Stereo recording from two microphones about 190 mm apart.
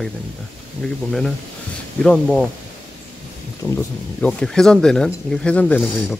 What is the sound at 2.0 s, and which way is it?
Speech, 5° left (ahead or behind).